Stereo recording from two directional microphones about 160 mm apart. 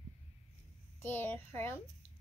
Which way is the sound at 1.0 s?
10° left (ahead or behind).